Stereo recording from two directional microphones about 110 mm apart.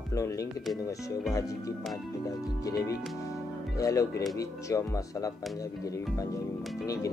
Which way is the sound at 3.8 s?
30° left (ahead or behind).